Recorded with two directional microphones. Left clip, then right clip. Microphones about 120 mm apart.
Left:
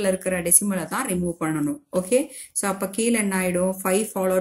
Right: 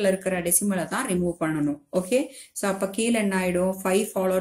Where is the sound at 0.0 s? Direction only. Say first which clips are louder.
Even; 35° left (ahead or behind).